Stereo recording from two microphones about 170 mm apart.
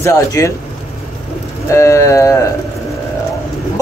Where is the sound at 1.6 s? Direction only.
15° left (ahead or behind).